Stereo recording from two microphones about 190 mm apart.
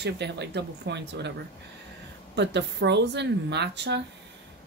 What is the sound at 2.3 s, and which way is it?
A woman's voice, 65° right (ahead or behind).